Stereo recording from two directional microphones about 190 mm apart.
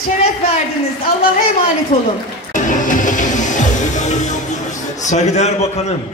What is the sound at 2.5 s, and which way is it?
Music, 40° left (ahead or behind).